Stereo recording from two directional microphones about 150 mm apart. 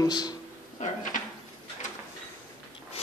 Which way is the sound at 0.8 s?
55° left (ahead or behind).